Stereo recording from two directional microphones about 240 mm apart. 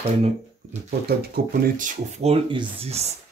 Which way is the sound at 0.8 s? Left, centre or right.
Right.